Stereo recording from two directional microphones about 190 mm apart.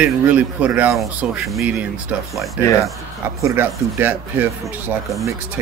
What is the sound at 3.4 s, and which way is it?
Speech, 15° right (ahead or behind).